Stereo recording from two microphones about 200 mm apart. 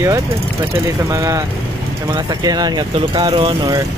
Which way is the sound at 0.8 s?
15° right (ahead or behind).